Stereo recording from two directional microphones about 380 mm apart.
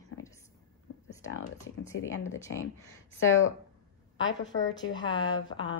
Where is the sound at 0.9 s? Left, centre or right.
Left.